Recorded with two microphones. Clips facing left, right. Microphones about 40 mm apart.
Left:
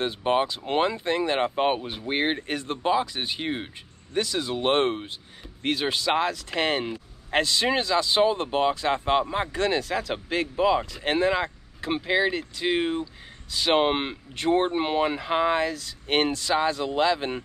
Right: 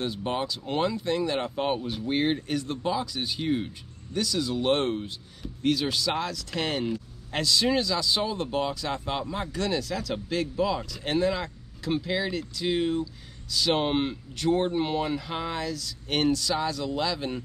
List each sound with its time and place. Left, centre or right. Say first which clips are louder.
0.0 s speech: left 6 dB; left